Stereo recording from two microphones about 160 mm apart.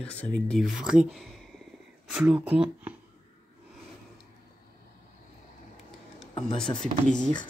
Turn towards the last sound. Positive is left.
turn(degrees=5)  # may be behind; listen again after turning